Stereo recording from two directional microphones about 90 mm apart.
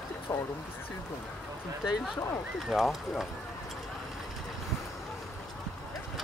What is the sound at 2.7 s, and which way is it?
Speech, centre (ahead or behind).